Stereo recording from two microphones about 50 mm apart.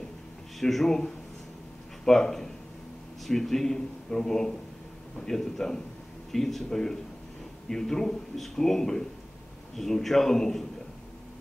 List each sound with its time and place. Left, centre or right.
0.6 s a man's voice: centre